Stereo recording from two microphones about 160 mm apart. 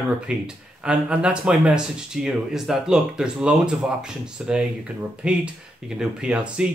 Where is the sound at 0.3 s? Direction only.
5° right (ahead or behind).